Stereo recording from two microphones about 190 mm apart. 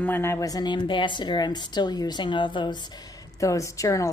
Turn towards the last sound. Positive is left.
turn(degrees=15)  # may be behind; listen again after turning